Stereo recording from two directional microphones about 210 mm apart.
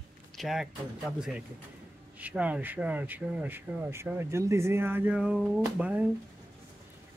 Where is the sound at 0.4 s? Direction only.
Centre (ahead or behind).